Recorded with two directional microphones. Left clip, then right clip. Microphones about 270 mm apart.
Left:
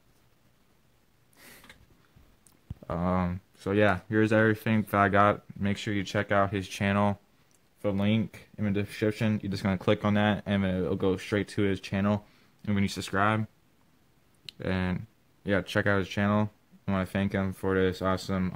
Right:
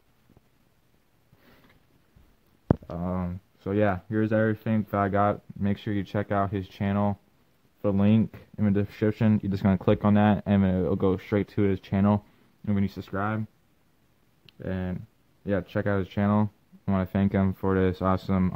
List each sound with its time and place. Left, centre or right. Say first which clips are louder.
2.9 s speech: left 4 dB; centre
7.8 s speech: right 4 dB; right
12.6 s speech: even; centre
14.4 s speech: left 2 dB; centre
15.4 s speech: left 1 dB; centre; by 18.5 s right